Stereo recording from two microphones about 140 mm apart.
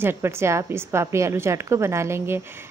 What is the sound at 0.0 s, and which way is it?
A woman's voice, 15° right (ahead or behind).